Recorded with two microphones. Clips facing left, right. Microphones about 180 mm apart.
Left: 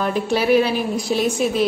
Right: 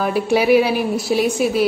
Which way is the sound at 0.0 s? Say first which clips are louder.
Right 3 dB; 10° right (ahead or behind).